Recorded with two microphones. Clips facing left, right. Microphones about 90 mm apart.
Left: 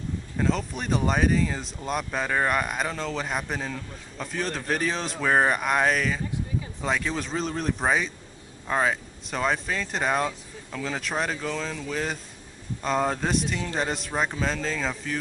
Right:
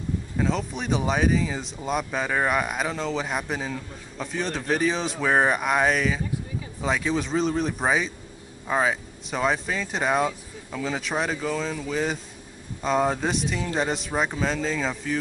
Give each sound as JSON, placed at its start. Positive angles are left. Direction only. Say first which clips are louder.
{"t": 0.4, "sound": "speech", "louder": "even", "side_deg": 0}